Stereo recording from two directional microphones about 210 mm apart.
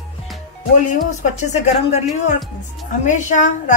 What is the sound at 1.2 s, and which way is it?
A woman's voice, 35° left (ahead or behind).